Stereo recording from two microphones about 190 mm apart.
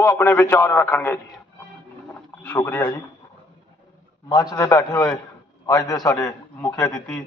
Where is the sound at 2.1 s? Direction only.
10° left (ahead or behind).